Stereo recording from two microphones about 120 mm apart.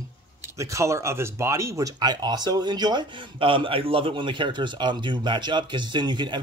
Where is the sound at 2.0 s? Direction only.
35° right (ahead or behind).